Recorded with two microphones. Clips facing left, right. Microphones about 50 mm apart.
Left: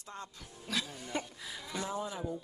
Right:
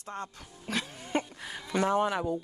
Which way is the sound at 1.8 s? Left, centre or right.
Right.